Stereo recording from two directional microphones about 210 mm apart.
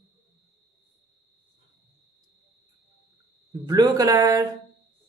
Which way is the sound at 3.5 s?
15° right (ahead or behind).